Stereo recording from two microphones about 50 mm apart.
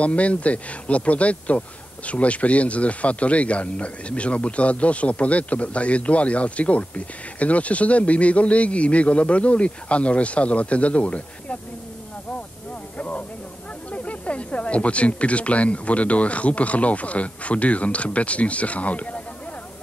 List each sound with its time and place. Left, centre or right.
0.0 s speech: left
12.9 s a sound: left
13.9 s speech: left